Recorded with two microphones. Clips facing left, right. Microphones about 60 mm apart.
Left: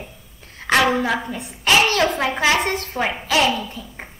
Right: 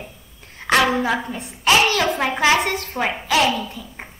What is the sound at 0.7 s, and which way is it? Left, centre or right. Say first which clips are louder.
A woman's voice: even; centre.